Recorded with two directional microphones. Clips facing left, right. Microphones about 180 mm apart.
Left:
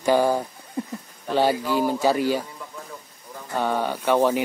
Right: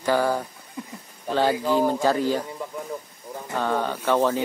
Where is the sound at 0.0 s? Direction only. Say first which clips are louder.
Left 3 dB; 15° left (ahead or behind).